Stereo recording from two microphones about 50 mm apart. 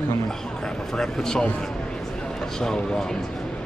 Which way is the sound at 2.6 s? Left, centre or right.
Centre.